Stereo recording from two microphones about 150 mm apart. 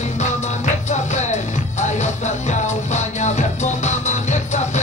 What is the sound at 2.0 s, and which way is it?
Music, 50° left (ahead or behind).